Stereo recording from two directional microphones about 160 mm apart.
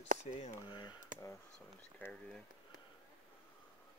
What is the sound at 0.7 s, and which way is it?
Speech, 30° left (ahead or behind).